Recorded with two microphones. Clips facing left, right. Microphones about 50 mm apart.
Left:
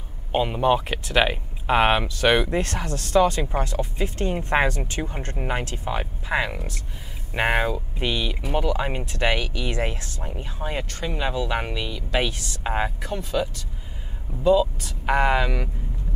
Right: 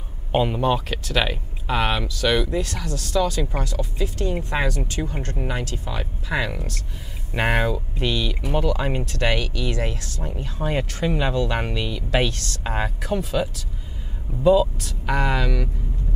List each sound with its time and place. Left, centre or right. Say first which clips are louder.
0.5 s speech: left 1 dB; centre
6.5 s speech: right 2 dB; centre
10.2 s speech: right 4 dB; centre
10.7 s speech: right 6 dB; centre
11.2 s speech: right 2 dB; centre
12.3 s speech: even; centre
13.1 s speech: right 2 dB; centre
15.0 s speech: left 2 dB; left